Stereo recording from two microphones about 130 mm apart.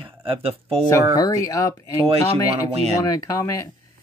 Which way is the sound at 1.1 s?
30° left (ahead or behind).